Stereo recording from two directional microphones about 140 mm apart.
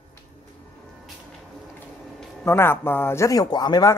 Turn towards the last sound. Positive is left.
turn(degrees=25)  # may be behind; listen again after turning